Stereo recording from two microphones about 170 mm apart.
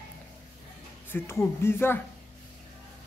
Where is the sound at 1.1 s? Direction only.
15° left (ahead or behind).